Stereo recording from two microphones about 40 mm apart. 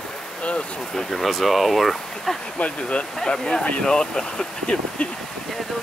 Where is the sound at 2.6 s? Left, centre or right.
Left.